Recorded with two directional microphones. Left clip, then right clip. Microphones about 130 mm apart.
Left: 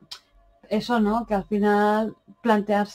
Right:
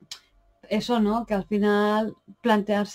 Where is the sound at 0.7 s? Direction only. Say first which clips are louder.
Left 1 dB; 40° right (ahead or behind).